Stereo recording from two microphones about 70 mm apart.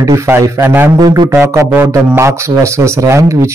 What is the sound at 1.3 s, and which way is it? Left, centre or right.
Speech, right.